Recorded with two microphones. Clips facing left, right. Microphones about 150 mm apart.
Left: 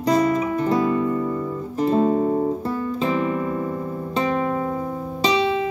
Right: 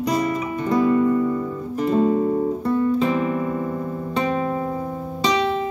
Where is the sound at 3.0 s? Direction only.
35° left (ahead or behind).